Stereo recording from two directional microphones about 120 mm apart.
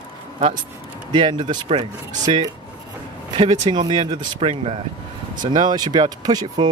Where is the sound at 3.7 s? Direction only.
50° right (ahead or behind).